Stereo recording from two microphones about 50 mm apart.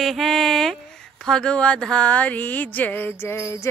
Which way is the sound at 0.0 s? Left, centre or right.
Centre.